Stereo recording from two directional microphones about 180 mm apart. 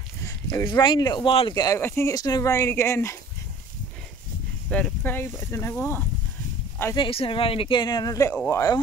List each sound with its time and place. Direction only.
0.2 s speech: 15° left (ahead or behind)
4.6 s speech: 5° left (ahead or behind)
7.0 s speech: 30° left (ahead or behind)